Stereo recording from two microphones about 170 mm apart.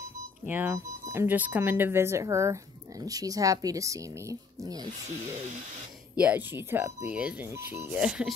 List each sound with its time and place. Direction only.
0.0 s speech: 10° right (ahead or behind)
6.1 s speech: 10° right (ahead or behind)